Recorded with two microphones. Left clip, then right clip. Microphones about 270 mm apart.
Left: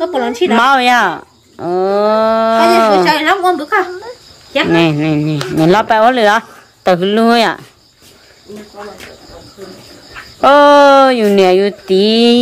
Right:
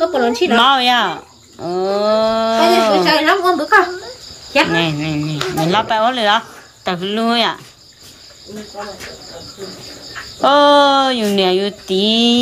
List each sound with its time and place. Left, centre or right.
0.0 s speech: centre
4.7 s speech: centre
10.4 s speech: centre